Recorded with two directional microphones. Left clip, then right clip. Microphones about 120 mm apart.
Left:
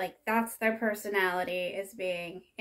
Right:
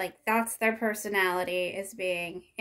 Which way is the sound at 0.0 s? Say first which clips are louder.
Right 2 dB; 30° right (ahead or behind).